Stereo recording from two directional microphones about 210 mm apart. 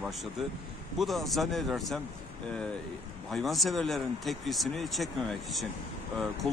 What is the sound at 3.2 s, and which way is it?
Speech, centre (ahead or behind).